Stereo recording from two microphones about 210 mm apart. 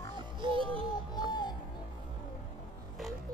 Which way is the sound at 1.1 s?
20° left (ahead or behind).